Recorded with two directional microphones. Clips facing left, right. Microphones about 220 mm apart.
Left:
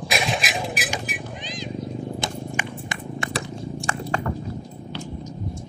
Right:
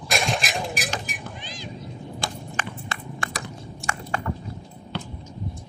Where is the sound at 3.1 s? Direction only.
30° left (ahead or behind).